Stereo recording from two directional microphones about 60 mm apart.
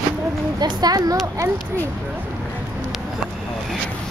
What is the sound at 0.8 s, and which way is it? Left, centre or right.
Speech, right.